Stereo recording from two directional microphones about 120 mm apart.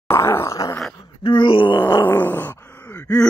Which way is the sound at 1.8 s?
20° left (ahead or behind).